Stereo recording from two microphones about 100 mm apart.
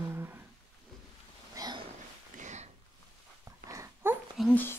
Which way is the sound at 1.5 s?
40° right (ahead or behind).